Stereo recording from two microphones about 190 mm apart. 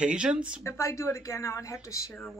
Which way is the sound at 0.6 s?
15° left (ahead or behind).